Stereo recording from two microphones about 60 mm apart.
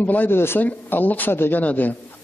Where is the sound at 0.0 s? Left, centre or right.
Left.